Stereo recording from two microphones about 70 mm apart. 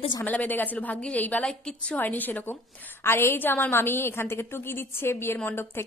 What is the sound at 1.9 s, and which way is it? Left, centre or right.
A woman's voice, left.